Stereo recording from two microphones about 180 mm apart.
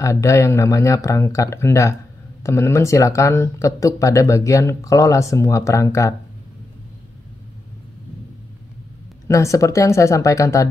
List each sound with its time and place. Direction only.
0.0 s speech: 15° left (ahead or behind)
9.3 s speech: 15° left (ahead or behind)